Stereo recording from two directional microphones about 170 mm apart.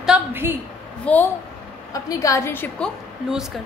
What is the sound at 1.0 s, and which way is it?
Speech, 10° left (ahead or behind).